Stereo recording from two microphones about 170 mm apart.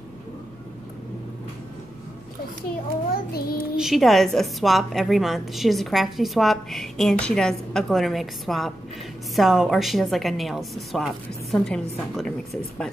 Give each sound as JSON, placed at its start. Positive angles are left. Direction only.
{"t": 3.1, "sound": "child singing", "side_deg": 65}
{"t": 3.7, "sound": "a woman's voice", "side_deg": 0}